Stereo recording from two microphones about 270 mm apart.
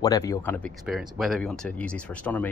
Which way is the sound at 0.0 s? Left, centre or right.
Centre.